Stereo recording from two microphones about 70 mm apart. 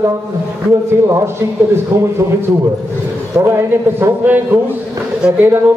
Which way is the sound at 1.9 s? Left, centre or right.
Right.